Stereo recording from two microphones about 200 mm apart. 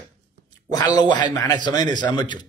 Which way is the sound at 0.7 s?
20° left (ahead or behind).